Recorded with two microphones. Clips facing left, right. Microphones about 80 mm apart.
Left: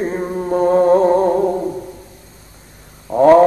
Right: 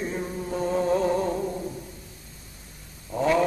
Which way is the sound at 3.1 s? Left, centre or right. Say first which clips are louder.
Left 14 dB; left.